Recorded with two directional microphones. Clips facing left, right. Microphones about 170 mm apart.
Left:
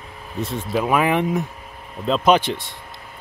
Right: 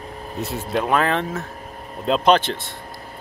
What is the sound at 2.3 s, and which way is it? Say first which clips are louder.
Speech: left 1 dB; 10° left (ahead or behind).